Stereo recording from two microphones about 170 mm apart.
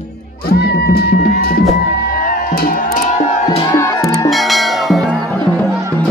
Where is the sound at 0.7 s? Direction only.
65° left (ahead or behind).